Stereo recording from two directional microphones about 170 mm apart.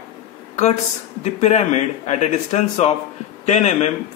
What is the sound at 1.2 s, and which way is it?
Speech, 45° left (ahead or behind).